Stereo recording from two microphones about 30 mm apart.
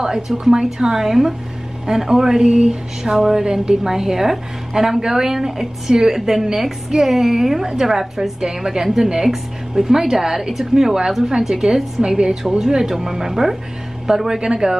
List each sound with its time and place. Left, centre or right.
0.4 s a woman's voice: right
1.0 s a woman's voice: centre
2.4 s a sound: right
2.7 s a woman's voice: centre